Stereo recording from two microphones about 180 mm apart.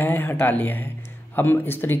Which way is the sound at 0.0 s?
10° left (ahead or behind).